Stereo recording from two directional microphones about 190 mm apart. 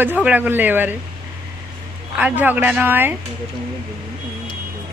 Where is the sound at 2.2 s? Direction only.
10° right (ahead or behind).